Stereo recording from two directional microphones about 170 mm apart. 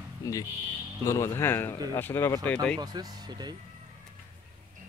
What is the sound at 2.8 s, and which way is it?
Speech, 25° right (ahead or behind).